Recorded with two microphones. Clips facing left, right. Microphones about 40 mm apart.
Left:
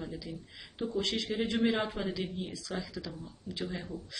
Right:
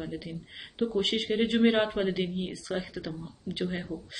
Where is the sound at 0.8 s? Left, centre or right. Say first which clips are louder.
Right 5 dB; right.